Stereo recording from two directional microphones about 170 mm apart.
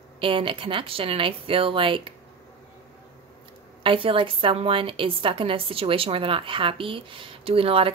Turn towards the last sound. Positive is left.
turn(degrees=-35)  # may be behind; listen again after turning